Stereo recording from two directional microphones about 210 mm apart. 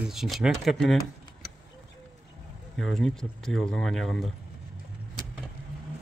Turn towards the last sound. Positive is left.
turn(degrees=0)  # may be behind; listen again after turning